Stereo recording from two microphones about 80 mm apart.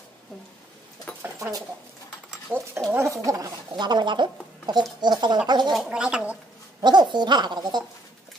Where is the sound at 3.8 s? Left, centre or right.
Right.